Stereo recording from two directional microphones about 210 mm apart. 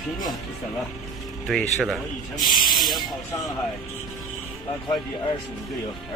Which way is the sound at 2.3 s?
20° left (ahead or behind).